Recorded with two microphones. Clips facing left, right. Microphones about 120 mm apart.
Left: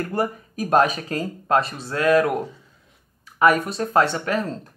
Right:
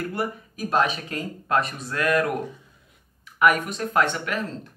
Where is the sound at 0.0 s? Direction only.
40° left (ahead or behind).